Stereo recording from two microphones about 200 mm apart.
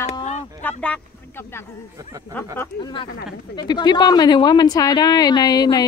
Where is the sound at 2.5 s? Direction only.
20° left (ahead or behind).